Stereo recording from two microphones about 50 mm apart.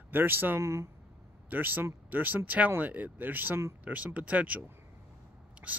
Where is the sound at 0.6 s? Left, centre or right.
Right.